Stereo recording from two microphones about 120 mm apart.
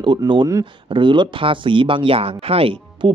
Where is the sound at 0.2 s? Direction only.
40° right (ahead or behind).